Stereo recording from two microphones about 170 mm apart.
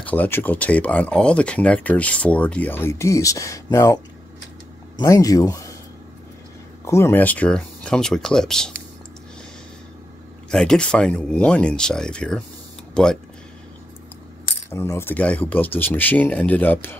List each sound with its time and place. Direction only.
0.0 s speech: 10° left (ahead or behind)
6.8 s speech: 15° left (ahead or behind)
10.5 s speech: 5° left (ahead or behind)
14.7 s speech: 15° left (ahead or behind)